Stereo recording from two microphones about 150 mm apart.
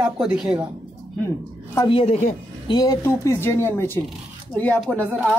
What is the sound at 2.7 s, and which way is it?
Speech, 25° left (ahead or behind).